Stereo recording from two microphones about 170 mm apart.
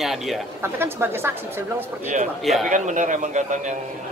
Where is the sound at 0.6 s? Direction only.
15° right (ahead or behind).